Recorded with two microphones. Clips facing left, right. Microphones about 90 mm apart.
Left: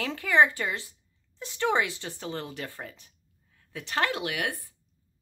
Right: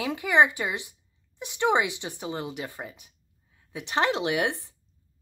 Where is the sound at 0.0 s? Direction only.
15° right (ahead or behind).